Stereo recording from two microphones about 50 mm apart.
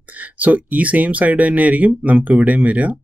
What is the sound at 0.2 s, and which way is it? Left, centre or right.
Speech, right.